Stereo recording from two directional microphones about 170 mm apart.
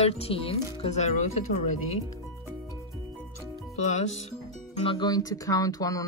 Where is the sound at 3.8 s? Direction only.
40° left (ahead or behind).